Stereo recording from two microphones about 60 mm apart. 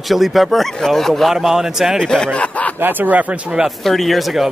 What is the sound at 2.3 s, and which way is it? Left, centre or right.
Speech, left.